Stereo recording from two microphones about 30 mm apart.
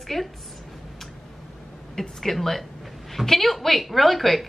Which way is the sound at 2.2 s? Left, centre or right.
Centre.